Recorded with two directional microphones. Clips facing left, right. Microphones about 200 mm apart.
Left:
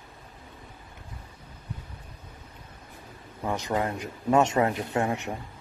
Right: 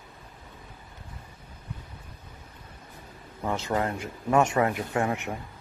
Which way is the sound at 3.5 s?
15° left (ahead or behind).